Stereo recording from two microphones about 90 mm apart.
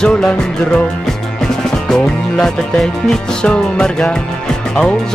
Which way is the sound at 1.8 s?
5° left (ahead or behind).